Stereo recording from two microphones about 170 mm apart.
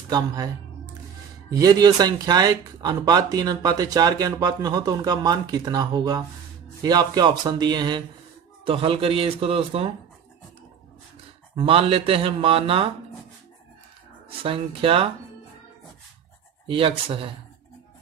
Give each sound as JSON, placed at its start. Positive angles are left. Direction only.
{"t": 0.1, "sound": "speech", "side_deg": -20}
{"t": 1.5, "sound": "speech", "side_deg": -20}
{"t": 11.5, "sound": "speech", "side_deg": -35}
{"t": 14.4, "sound": "speech", "side_deg": -30}
{"t": 16.6, "sound": "speech", "side_deg": -30}